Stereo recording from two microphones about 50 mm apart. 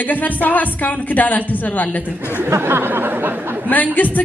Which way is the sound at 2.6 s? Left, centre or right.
Right.